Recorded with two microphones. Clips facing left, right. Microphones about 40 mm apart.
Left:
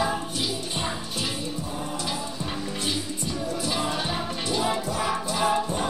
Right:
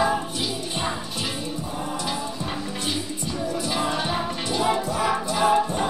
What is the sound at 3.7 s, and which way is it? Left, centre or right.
Music, centre.